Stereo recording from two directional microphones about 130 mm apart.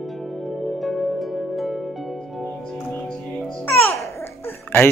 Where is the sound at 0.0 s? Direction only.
Centre (ahead or behind).